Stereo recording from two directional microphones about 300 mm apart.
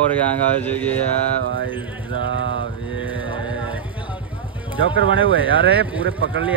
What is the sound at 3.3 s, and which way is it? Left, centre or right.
Music, centre.